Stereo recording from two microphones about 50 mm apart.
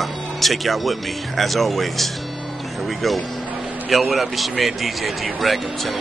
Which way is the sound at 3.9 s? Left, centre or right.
Centre.